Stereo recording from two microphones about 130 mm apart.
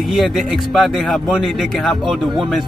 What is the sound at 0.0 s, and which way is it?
A man's voice, centre (ahead or behind).